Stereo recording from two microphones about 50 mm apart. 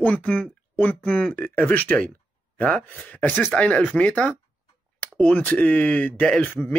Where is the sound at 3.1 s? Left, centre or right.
Left.